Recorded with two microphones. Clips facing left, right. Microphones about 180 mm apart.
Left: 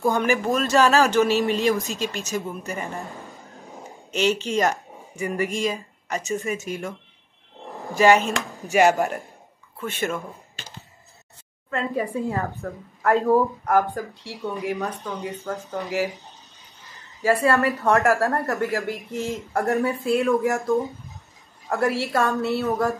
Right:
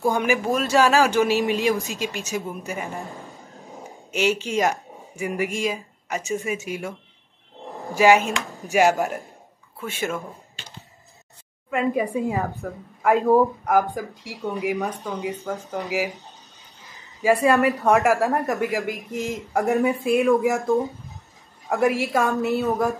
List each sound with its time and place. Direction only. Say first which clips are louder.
0.0 s a woman's voice: even; 10° right (ahead or behind)
3.3 s a sound: even; centre (ahead or behind)
4.2 s a woman's voice: even; 10° right (ahead or behind)
11.7 s a woman's voice: right 3 dB; 15° right (ahead or behind)
17.2 s a woman's voice: right 2 dB; 15° right (ahead or behind)
21.6 s a woman's voice: right 2 dB; 15° right (ahead or behind)